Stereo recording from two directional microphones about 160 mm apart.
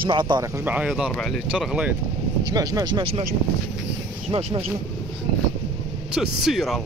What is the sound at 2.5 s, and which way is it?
Speech, 25° right (ahead or behind).